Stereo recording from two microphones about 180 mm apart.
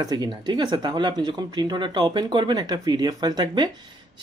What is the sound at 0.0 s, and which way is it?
Speech, 25° right (ahead or behind).